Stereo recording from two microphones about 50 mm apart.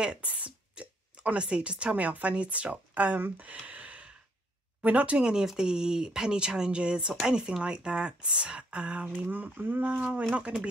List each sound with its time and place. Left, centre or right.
0.0 s speech: right
3.3 s a sound: right
4.8 s speech: right
9.2 s speech: right